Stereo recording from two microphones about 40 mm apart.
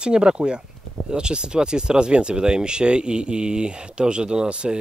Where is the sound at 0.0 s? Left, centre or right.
Right.